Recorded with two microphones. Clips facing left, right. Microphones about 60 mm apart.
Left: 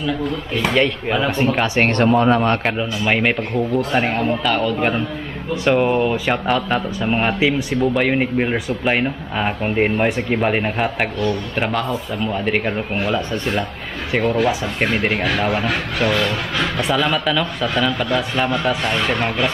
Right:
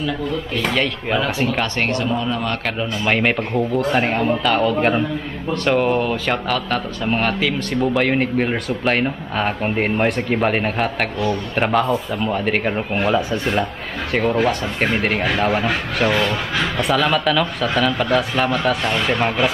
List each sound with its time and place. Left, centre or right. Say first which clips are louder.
0.6 s speech: left 5 dB; centre
1.8 s speech: left 6 dB; left
2.8 s speech: even; centre
5.5 s speech: left 1 dB; centre
7.8 s speech: even; centre
14.4 s speech: even; centre